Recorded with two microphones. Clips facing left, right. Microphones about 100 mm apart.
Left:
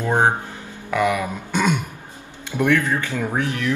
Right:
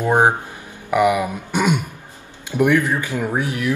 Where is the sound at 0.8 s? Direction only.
15° right (ahead or behind).